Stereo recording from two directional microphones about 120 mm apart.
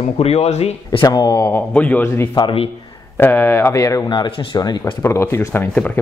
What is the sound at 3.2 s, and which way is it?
Speech, 20° left (ahead or behind).